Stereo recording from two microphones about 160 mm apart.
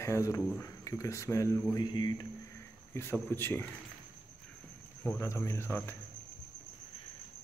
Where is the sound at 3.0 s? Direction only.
15° left (ahead or behind).